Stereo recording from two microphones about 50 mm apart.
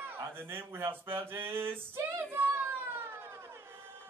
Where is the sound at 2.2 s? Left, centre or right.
Right.